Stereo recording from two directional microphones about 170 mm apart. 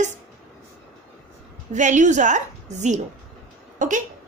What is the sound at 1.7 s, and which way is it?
A woman's voice, 45° right (ahead or behind).